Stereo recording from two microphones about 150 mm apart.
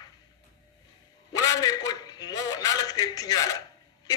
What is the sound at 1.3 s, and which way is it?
A man's voice, 25° left (ahead or behind).